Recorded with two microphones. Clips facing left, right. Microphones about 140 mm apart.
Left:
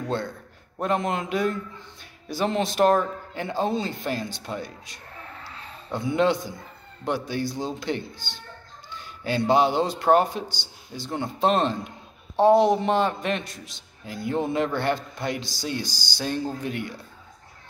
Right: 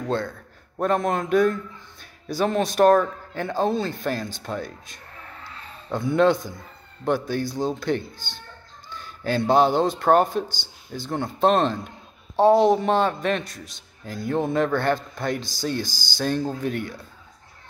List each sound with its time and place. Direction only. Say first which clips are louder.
0.7 s a man's voice: right 3 dB; 50° right (ahead or behind)
3.6 s a man's voice: right 3 dB; 20° left (ahead or behind)
3.9 s a man's voice: right 2 dB; 45° right (ahead or behind)
12.4 s a man's voice: right 1 dB; 15° left (ahead or behind)
12.8 s a man's voice: right 2 dB; 50° right (ahead or behind)